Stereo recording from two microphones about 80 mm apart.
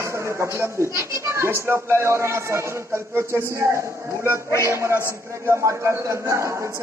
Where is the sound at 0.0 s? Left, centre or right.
Right.